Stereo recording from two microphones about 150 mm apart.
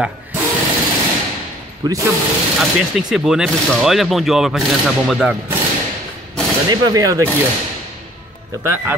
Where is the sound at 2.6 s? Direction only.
5° right (ahead or behind).